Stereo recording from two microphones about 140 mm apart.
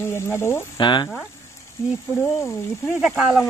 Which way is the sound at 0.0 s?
20° left (ahead or behind).